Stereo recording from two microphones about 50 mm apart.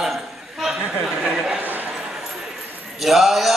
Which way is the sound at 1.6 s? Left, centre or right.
Right.